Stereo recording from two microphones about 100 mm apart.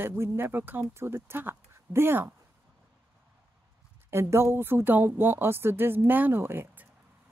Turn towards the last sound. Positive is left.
turn(degrees=-25)  # may be behind; listen again after turning